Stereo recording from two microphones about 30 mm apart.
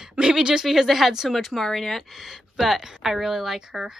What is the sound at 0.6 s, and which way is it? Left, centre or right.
Speech, centre.